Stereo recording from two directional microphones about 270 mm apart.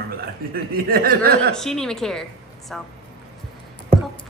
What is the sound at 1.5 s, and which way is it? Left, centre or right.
A woman's voice, centre.